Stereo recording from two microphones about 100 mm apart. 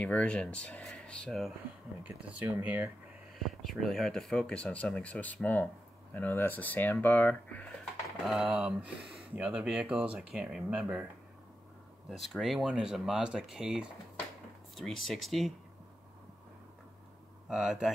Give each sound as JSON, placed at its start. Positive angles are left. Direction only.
{"t": 0.0, "sound": "speech", "side_deg": 10}
{"t": 2.0, "sound": "speech", "side_deg": -15}
{"t": 3.3, "sound": "speech", "side_deg": 0}
{"t": 8.2, "sound": "speech", "side_deg": -5}
{"t": 12.1, "sound": "speech", "side_deg": 0}
{"t": 17.5, "sound": "speech", "side_deg": -10}